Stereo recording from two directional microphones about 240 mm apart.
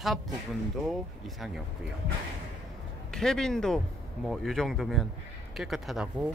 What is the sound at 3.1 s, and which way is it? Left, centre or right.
Speech, centre.